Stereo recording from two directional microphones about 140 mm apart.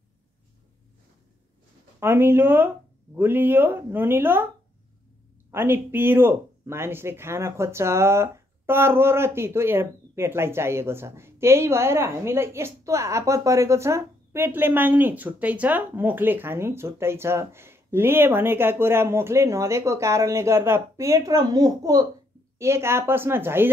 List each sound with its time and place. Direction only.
2.0 s speech: 15° right (ahead or behind)
5.5 s speech: 15° right (ahead or behind)